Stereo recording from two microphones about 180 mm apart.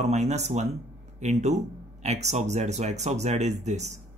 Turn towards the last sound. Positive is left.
turn(degrees=-40)  # may be behind; listen again after turning